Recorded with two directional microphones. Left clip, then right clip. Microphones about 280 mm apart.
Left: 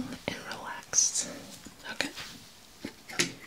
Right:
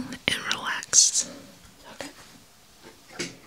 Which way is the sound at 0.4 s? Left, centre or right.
Right.